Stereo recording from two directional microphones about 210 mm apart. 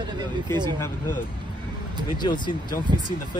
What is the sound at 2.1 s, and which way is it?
Speech, 20° left (ahead or behind).